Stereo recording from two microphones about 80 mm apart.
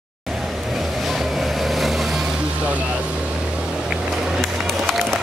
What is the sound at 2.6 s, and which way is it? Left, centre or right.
Vehicle, centre.